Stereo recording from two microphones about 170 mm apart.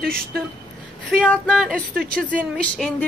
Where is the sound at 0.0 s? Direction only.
60° right (ahead or behind).